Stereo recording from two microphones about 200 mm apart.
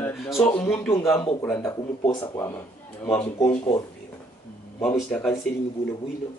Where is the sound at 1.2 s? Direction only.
25° left (ahead or behind).